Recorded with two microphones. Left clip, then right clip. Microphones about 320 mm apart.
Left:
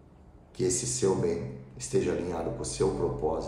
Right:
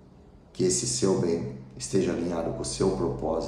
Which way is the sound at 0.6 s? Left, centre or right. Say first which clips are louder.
Right 3 dB; centre.